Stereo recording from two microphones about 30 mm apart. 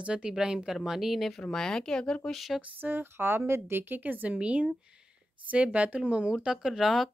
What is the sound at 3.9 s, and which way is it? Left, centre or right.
Speech, right.